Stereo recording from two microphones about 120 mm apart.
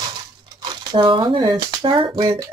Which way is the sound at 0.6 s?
45° right (ahead or behind).